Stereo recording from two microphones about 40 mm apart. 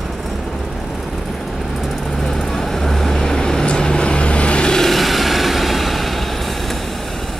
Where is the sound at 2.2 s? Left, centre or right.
Centre.